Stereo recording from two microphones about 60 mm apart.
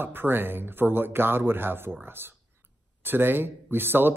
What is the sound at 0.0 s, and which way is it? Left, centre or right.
Speech, right.